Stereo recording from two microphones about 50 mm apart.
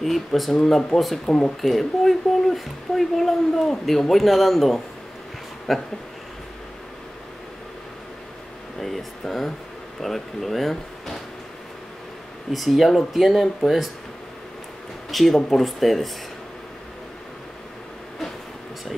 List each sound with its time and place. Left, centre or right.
0.0 s speech: centre
1.2 s speech: centre
1.6 s speech: centre
8.7 s speech: centre
12.5 s speech: centre
15.0 s speech: centre